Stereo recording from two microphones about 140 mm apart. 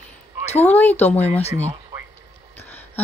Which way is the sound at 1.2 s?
50° left (ahead or behind).